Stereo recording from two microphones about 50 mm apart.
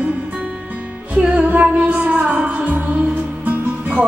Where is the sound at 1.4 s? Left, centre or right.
Right.